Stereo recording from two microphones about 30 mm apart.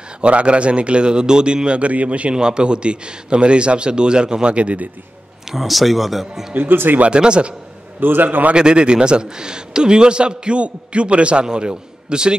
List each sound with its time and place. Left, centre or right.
0.2 s a man's voice: right
1.9 s speech: right
2.3 s a man's voice: right
5.5 s speech: centre
6.5 s a man's voice: right
7.1 s a man's voice: right
8.0 s a man's voice: right
8.5 s a man's voice: right
11.4 s a man's voice: right